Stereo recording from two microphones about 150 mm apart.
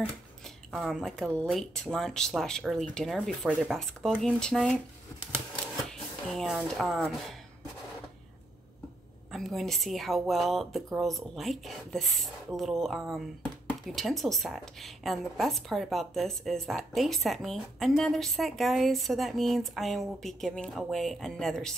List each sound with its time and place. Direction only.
0.7 s a woman's voice: centre (ahead or behind)
6.2 s a woman's voice: centre (ahead or behind)
9.3 s a woman's voice: centre (ahead or behind)